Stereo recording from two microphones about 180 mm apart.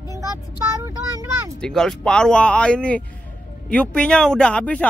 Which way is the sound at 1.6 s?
5° left (ahead or behind).